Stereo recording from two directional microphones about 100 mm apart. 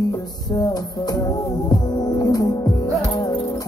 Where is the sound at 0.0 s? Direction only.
35° left (ahead or behind).